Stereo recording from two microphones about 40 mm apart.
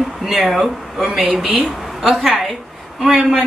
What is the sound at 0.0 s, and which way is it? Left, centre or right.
A woman's voice, centre.